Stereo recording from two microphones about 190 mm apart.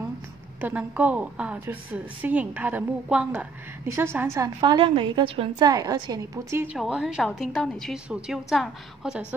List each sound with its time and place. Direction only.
0.6 s a woman's voice: 10° right (ahead or behind)
4.6 s a woman's voice: 25° right (ahead or behind); by 9.2 s centre (ahead or behind)